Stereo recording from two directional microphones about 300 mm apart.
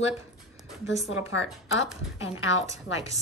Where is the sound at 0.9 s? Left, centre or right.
Centre.